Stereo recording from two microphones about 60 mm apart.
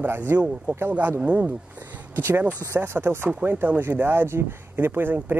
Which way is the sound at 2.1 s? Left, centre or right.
Right.